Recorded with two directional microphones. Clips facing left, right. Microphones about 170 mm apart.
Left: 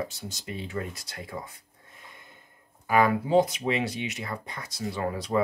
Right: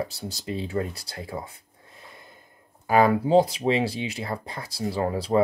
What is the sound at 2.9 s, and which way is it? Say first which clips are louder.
Speech: right 4 dB; 35° right (ahead or behind).